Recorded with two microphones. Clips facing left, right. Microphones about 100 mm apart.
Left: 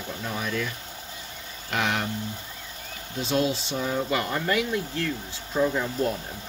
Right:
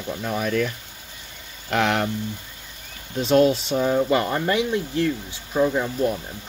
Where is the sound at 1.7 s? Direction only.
60° right (ahead or behind).